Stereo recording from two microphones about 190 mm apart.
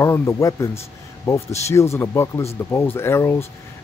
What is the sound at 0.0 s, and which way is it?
Speech, 15° left (ahead or behind).